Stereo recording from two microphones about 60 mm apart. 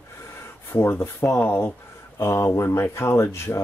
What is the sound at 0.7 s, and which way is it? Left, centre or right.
Speech, left.